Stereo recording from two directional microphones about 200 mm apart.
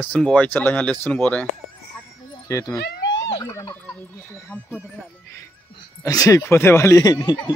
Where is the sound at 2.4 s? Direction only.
15° left (ahead or behind).